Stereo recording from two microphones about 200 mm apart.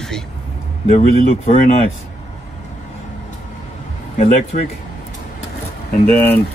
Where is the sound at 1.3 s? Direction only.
30° left (ahead or behind).